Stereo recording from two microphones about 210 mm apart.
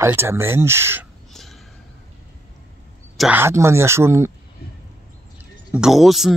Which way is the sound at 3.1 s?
5° right (ahead or behind).